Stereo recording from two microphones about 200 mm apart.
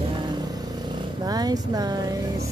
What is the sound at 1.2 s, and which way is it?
Speech, 20° right (ahead or behind).